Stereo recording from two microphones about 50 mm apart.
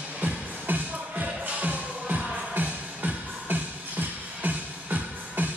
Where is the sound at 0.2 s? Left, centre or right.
Right.